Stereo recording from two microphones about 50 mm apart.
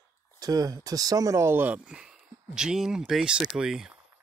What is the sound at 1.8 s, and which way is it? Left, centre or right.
Speech, centre.